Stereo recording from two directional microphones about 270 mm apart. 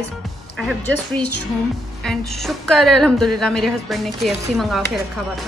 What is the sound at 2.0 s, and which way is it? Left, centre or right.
A woman's voice, centre.